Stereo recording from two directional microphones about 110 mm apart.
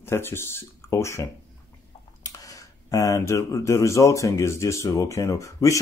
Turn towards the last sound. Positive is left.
turn(degrees=30)  # may be behind; listen again after turning